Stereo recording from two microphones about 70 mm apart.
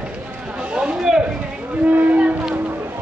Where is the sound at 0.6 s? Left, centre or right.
Centre.